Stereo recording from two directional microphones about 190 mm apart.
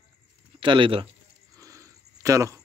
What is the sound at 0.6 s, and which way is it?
Speech, 25° right (ahead or behind).